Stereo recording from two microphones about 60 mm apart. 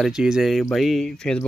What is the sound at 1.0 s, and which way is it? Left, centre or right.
Speech, centre.